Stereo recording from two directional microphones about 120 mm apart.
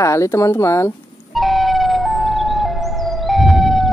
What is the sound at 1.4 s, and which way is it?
Emergency vehicle, centre (ahead or behind).